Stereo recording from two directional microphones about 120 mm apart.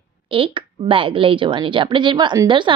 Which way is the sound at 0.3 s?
45° right (ahead or behind).